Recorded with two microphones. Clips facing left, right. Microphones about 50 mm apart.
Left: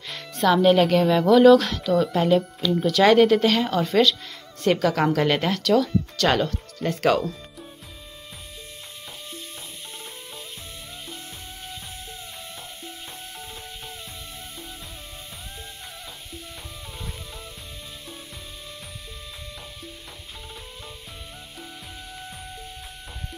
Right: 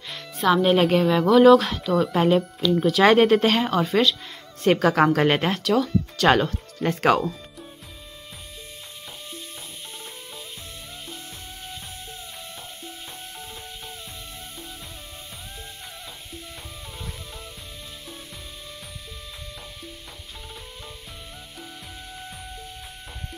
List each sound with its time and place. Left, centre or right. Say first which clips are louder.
0.1 s music: even; centre
1.0 s speech: even; centre
3.1 s speech: left 1 dB; right
3.6 s speech: left 1 dB; centre
4.7 s speech: right 4 dB; right